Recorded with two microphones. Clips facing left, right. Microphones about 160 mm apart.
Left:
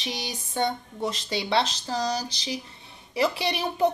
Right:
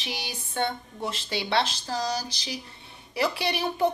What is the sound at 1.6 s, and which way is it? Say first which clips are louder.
Speech: left 1 dB; 10° right (ahead or behind).